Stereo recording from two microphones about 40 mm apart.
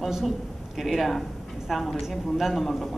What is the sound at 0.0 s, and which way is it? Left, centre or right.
A man's voice, centre.